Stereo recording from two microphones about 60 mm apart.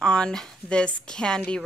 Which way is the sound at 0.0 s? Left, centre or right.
Centre.